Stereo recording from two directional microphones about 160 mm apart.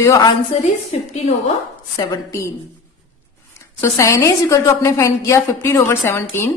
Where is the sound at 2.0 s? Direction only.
20° left (ahead or behind).